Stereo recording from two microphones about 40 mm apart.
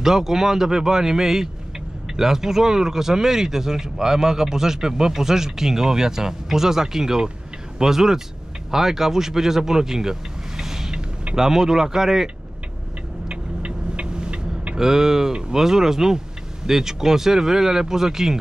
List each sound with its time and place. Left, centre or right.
0.0 s speech: centre
10.6 s vehicle: centre
11.3 s speech: centre
13.3 s vehicle: right
14.8 s speech: centre